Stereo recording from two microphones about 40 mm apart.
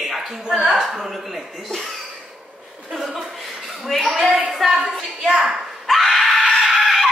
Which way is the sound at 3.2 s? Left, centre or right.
Centre.